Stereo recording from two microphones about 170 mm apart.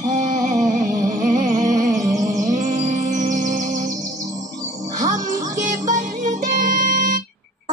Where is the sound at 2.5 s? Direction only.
45° right (ahead or behind).